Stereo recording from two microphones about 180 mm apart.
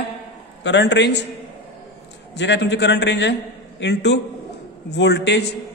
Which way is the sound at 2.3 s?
75° left (ahead or behind).